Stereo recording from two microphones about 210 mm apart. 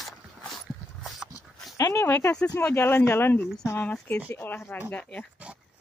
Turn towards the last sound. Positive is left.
turn(degrees=-5)  # may be behind; listen again after turning